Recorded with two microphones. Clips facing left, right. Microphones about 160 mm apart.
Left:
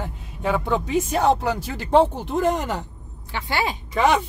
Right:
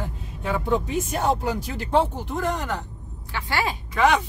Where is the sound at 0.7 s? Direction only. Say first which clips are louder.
Right 1 dB; 90° left.